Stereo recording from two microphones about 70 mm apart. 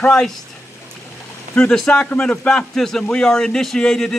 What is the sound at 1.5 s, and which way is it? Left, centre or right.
Speech, centre.